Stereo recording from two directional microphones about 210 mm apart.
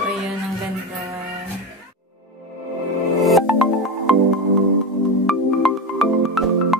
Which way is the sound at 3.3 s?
Centre (ahead or behind).